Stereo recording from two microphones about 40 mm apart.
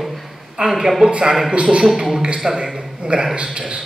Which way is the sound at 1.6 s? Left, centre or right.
Right.